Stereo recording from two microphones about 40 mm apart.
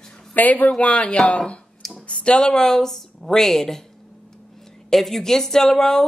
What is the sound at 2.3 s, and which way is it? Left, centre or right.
Speech, centre.